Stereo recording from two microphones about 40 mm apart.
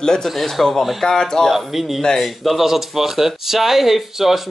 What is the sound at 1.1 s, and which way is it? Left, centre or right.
Speech, centre.